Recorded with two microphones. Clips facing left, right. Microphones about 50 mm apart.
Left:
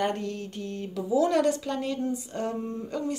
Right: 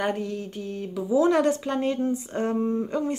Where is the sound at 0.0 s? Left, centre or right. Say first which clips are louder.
Right 2 dB; centre.